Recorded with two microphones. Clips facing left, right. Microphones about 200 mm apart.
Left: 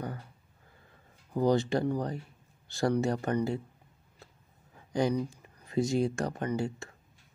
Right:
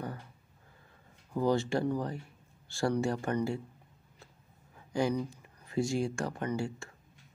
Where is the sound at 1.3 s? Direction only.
15° left (ahead or behind).